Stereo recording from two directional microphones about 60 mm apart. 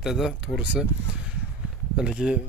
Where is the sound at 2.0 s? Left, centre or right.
Centre.